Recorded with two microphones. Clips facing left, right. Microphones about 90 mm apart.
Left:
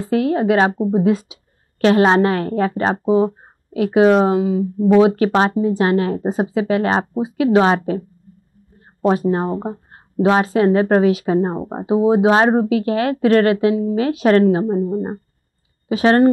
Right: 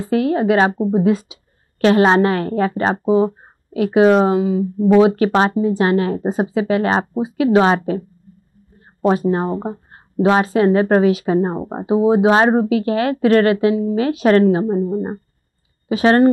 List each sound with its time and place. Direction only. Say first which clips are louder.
0.0 s speech: even; 15° right (ahead or behind)
1.8 s a woman's voice: even; 10° right (ahead or behind)
9.3 s speech: even; 25° right (ahead or behind)